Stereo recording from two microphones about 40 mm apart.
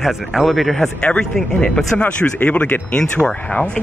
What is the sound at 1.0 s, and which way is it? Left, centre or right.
Speech, left.